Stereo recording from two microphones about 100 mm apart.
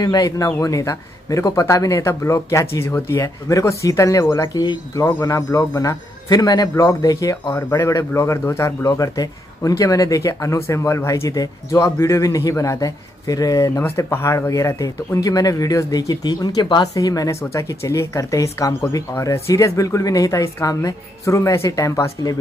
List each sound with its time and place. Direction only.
0.0 s speech: 40° left (ahead or behind)
4.6 s speech: 40° left (ahead or behind)
18.7 s speech: 20° left (ahead or behind)
18.9 s speech: 35° left (ahead or behind)